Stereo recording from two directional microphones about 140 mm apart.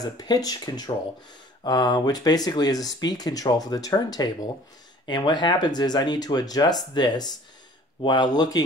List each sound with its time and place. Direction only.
0.2 s speech: 30° left (ahead or behind)